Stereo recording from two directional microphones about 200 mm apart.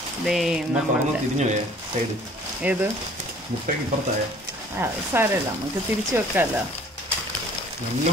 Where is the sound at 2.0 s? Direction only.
40° right (ahead or behind).